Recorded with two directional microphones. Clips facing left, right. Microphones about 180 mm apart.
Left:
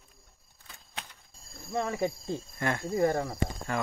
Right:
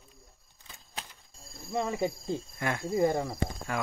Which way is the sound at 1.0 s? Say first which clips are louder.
Right 2 dB; centre (ahead or behind).